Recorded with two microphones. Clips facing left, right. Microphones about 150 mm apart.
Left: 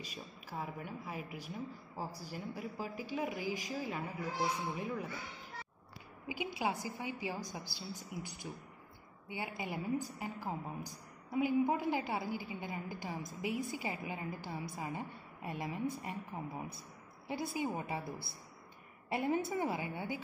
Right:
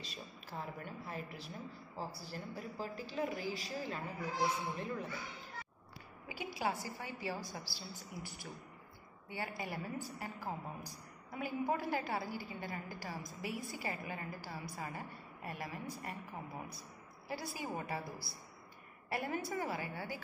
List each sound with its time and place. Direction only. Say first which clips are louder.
0.0 s a woman's voice: left 2 dB; 10° left (ahead or behind)
6.2 s a woman's voice: left 2 dB; 15° left (ahead or behind)